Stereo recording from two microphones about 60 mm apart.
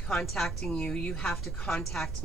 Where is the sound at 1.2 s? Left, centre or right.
Centre.